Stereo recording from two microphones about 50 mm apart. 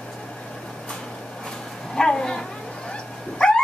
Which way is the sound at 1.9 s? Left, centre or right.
Centre.